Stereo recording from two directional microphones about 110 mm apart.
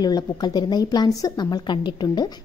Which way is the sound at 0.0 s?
40° left (ahead or behind).